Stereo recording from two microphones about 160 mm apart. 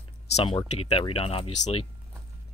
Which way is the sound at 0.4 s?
35° left (ahead or behind).